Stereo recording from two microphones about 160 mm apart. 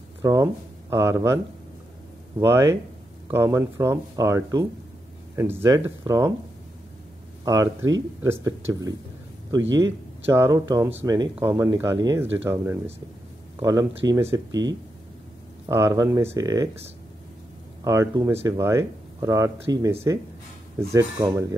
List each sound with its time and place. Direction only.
0.2 s speech: 20° right (ahead or behind)
7.4 s speech: 20° right (ahead or behind)
17.8 s speech: 20° right (ahead or behind)